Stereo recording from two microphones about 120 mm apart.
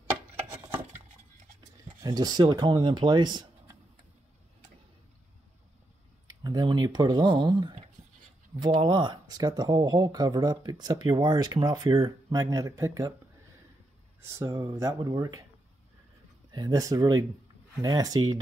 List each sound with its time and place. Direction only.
0.4 s a sound: 20° right (ahead or behind)
2.0 s speech: 35° right (ahead or behind)
6.2 s speech: 35° right (ahead or behind)
14.2 s speech: 20° right (ahead or behind)
16.5 s speech: 35° right (ahead or behind)